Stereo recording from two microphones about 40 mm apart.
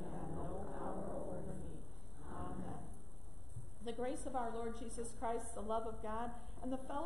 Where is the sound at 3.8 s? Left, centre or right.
Centre.